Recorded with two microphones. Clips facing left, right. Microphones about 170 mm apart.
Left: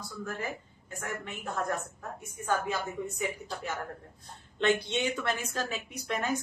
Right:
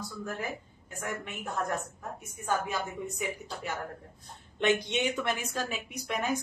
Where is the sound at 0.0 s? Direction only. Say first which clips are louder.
Even; 15° right (ahead or behind).